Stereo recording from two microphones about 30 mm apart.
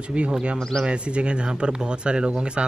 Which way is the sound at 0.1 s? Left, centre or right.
Right.